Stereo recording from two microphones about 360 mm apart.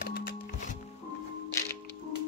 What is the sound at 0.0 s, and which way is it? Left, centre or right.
Music, left.